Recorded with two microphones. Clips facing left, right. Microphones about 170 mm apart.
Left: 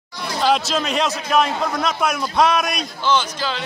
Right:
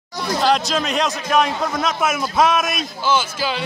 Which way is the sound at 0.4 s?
Centre (ahead or behind).